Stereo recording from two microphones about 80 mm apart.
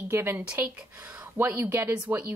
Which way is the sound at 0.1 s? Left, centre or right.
Right.